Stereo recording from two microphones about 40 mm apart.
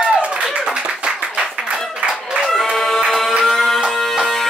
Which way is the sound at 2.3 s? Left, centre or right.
Centre.